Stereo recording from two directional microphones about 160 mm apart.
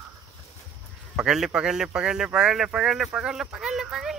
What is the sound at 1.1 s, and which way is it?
Speech, 5° right (ahead or behind).